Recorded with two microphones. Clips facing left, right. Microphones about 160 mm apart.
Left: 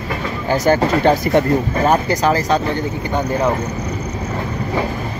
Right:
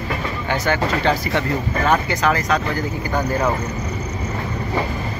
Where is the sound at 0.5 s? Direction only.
40° left (ahead or behind).